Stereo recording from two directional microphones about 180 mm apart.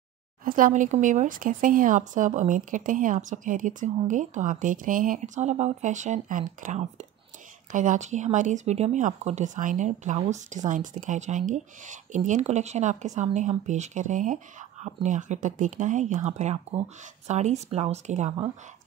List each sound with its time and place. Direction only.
0.5 s speech: 50° right (ahead or behind)